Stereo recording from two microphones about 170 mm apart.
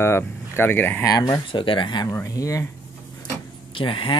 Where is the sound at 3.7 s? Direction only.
30° left (ahead or behind).